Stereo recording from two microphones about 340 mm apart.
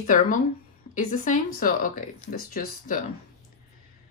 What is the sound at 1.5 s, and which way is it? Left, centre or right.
Speech, left.